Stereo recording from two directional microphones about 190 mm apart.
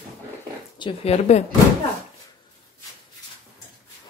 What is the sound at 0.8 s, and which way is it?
Speech, 30° left (ahead or behind).